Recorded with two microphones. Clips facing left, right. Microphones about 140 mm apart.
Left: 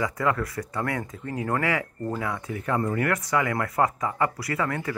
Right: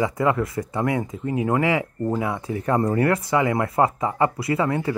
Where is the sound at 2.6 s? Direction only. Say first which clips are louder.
Right 6 dB; 35° right (ahead or behind).